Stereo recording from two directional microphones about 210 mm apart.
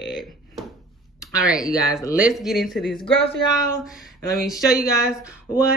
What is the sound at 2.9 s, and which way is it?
Speech, 25° left (ahead or behind).